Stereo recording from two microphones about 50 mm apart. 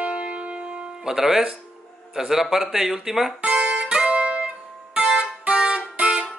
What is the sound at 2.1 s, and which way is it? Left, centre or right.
Speech, centre.